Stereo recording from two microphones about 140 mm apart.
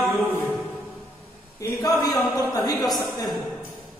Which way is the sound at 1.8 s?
25° left (ahead or behind).